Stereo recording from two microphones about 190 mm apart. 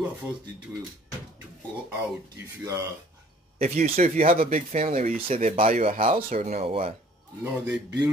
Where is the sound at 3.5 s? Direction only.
40° right (ahead or behind).